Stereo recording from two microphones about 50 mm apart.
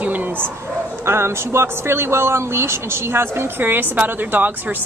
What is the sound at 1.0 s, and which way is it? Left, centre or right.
A woman's voice, right.